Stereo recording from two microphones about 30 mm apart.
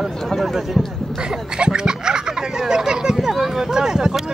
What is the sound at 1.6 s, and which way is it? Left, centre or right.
Speech, right.